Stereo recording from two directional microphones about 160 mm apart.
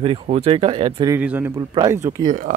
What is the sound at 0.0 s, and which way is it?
Speech, 35° right (ahead or behind).